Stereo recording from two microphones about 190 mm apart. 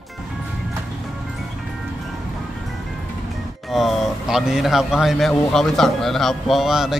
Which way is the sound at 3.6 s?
Centre (ahead or behind).